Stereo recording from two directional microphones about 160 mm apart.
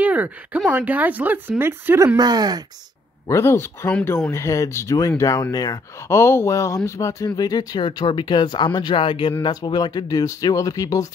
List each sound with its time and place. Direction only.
0.0 s speech: 10° right (ahead or behind)
2.1 s speech: 25° right (ahead or behind)
3.3 s speech: 15° left (ahead or behind)